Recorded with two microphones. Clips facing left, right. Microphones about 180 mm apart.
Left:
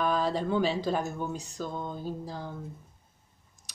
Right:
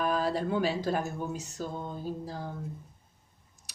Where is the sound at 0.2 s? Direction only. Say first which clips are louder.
Left 1 dB; 10° right (ahead or behind).